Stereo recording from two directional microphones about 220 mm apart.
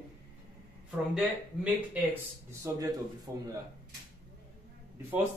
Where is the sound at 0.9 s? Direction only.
5° right (ahead or behind).